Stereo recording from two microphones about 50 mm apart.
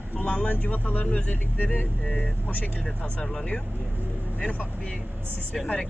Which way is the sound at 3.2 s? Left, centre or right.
Centre.